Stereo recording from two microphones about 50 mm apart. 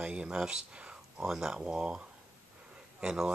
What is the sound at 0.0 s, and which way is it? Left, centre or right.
Speech, centre.